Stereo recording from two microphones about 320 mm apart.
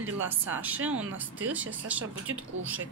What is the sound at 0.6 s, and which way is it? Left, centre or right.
Speech, centre.